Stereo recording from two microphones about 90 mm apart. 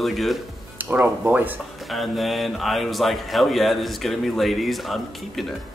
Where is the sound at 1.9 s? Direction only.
Centre (ahead or behind).